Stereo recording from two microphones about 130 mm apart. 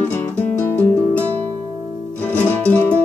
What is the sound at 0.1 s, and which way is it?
Music, 15° left (ahead or behind).